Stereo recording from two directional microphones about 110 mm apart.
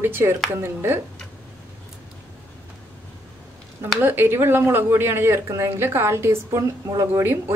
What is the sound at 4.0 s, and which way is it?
Speech, 20° right (ahead or behind).